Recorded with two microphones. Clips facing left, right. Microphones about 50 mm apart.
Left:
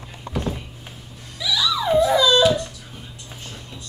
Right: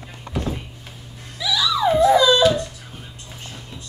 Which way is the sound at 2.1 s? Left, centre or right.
Centre.